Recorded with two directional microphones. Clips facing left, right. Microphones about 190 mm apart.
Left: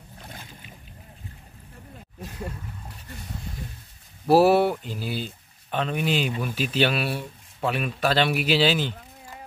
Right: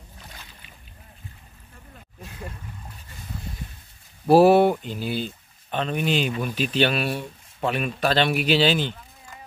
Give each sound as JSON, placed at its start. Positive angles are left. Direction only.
{"t": 0.2, "sound": "boat", "side_deg": 50}
{"t": 4.3, "sound": "speech", "side_deg": 5}